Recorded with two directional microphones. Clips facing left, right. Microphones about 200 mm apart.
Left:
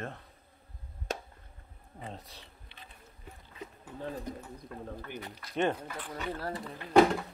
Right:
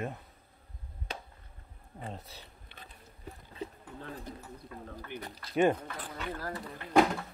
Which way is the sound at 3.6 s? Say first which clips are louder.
Right 5 dB; 30° right (ahead or behind).